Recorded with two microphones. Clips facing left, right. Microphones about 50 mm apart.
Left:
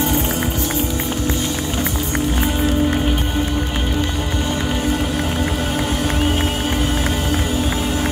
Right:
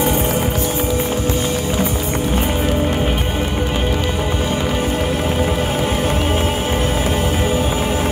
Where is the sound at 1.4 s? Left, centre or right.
Centre.